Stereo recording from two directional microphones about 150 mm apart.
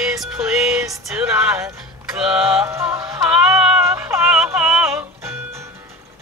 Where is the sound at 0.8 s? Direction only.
20° right (ahead or behind).